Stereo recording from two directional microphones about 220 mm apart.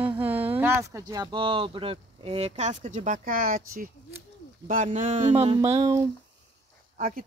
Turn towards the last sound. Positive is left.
turn(degrees=-35)  # may be behind; listen again after turning